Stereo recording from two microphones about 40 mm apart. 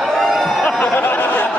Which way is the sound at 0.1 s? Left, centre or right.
Centre.